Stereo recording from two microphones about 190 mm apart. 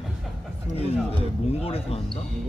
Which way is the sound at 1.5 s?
30° left (ahead or behind).